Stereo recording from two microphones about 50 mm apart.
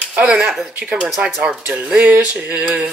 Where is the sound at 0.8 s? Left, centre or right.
Right.